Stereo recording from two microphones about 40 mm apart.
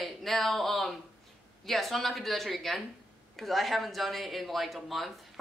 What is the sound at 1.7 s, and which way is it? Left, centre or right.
Speech, centre.